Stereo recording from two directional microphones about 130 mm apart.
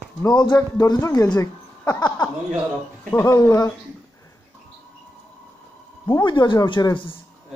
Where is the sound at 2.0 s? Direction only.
10° left (ahead or behind).